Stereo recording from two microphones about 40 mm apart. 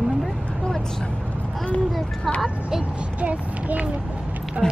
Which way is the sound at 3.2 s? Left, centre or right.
Right.